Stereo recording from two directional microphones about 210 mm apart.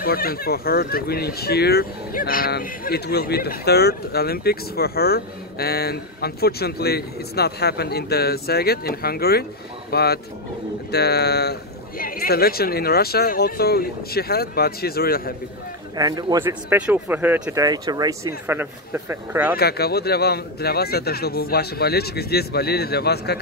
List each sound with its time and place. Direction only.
0.0 s speech: 45° left (ahead or behind)
16.0 s a man's voice: 20° right (ahead or behind)
16.6 s speech: 5° right (ahead or behind)
19.5 s speech: 50° left (ahead or behind)